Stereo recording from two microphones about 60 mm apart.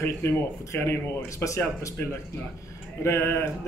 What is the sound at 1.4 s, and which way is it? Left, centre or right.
Speech, left.